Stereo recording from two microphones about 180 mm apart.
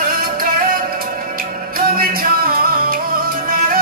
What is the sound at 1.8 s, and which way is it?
Music, 55° right (ahead or behind).